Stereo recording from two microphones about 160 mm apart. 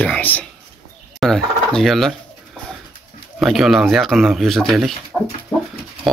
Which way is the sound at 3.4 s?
Centre (ahead or behind).